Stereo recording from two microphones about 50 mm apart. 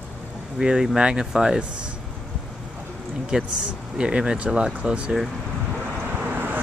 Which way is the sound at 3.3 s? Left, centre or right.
Centre.